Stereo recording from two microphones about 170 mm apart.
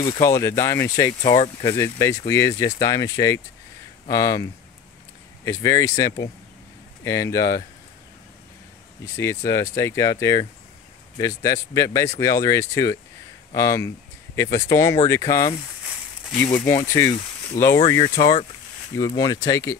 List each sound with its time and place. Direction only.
0.2 s speech: 15° left (ahead or behind)
9.1 s speech: 15° left (ahead or behind)
16.6 s speech: 15° left (ahead or behind)